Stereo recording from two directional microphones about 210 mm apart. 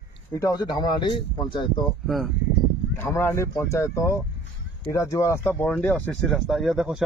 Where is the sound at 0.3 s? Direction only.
15° left (ahead or behind).